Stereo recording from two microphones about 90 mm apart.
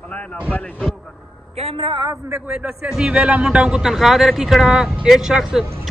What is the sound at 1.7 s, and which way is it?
Speech, 90° right.